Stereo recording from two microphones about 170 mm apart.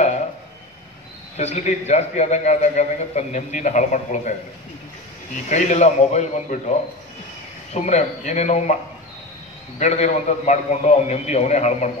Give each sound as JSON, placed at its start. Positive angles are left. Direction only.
{"t": 1.3, "sound": "a man's voice", "side_deg": 40}
{"t": 5.5, "sound": "a man's voice", "side_deg": 45}
{"t": 7.7, "sound": "a man's voice", "side_deg": 40}
{"t": 9.8, "sound": "a man's voice", "side_deg": 40}